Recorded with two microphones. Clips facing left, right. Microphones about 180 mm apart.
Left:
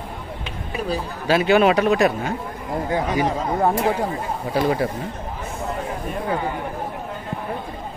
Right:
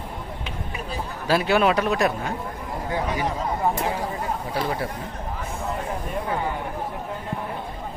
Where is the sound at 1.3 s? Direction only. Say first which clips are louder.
Left 4 dB; centre (ahead or behind).